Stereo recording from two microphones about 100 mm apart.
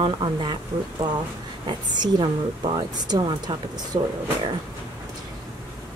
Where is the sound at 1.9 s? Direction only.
45° right (ahead or behind).